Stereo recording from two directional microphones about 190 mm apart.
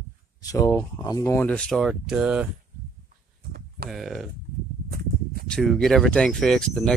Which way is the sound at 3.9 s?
Centre (ahead or behind).